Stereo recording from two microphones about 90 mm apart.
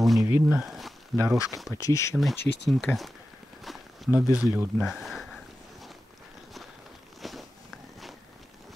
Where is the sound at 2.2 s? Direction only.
Centre (ahead or behind).